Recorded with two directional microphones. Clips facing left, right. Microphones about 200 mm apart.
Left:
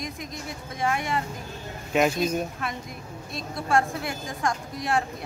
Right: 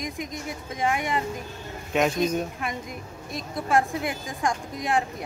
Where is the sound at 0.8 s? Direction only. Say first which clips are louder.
Right 1 dB; 15° right (ahead or behind).